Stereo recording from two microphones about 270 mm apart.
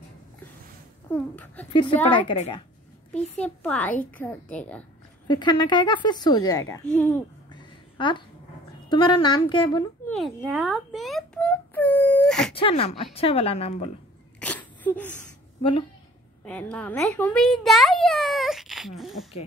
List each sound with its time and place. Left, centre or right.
1.1 s a woman's voice: centre
2.1 s a woman's voice: left
3.3 s a woman's voice: centre
5.3 s a woman's voice: centre
7.5 s a sound: centre
8.8 s a woman's voice: centre
10.0 s a sound: centre
12.5 s a woman's voice: left
14.4 s wail: centre
15.1 s a sound: centre
16.4 s a child's voice: centre